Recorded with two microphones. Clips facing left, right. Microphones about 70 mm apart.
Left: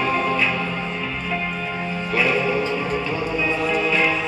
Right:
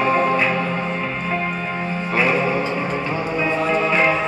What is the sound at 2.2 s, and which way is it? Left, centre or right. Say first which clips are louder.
Music: right 2 dB; right.